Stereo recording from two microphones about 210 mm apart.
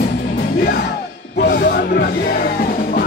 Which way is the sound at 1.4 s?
45° left (ahead or behind).